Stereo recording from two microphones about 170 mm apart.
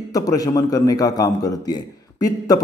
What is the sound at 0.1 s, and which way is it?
Speech, 20° left (ahead or behind).